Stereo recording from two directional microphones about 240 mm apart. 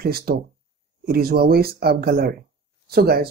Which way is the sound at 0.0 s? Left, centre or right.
Right.